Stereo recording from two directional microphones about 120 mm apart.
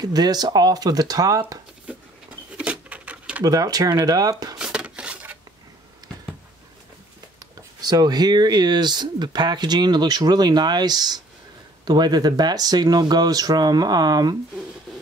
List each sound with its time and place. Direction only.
0.0 s speech: 35° right (ahead or behind)
2.5 s pigeon: 10° right (ahead or behind)
3.4 s speech: 30° right (ahead or behind)
4.6 s a sound: 5° right (ahead or behind)
7.3 s speech: 35° right (ahead or behind)